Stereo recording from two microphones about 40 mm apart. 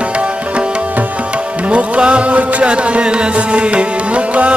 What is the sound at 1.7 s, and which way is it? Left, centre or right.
Music, right.